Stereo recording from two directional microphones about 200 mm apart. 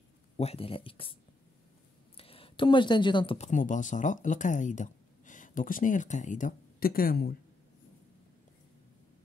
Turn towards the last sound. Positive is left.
turn(degrees=50)  # may be behind; listen again after turning